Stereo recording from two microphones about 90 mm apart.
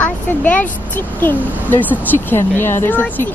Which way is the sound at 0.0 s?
20° left (ahead or behind).